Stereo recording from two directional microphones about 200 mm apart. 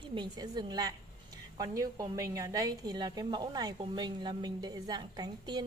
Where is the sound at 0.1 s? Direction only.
20° right (ahead or behind).